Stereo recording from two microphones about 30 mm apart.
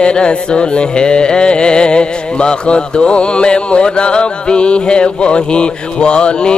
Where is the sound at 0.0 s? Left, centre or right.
Left.